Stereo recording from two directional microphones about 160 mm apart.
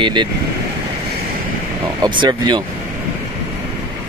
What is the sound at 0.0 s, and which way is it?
Speech, 30° right (ahead or behind).